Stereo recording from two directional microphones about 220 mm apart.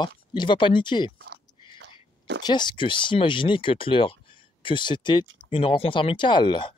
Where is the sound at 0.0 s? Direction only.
20° left (ahead or behind).